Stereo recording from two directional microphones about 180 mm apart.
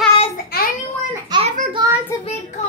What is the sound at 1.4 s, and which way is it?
Speech, 45° right (ahead or behind).